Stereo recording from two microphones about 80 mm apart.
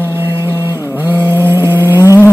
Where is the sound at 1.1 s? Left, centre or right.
Right.